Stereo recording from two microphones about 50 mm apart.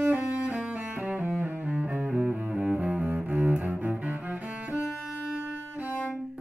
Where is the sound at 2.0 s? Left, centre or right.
Centre.